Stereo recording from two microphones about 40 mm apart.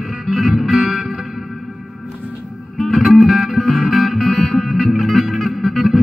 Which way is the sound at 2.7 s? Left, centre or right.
Centre.